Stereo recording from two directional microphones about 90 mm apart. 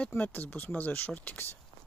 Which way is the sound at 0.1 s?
20° left (ahead or behind).